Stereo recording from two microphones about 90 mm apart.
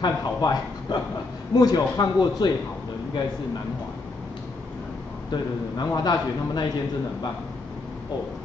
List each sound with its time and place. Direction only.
0.0 s a man's voice: 50° left (ahead or behind)
5.3 s a man's voice: 50° left (ahead or behind)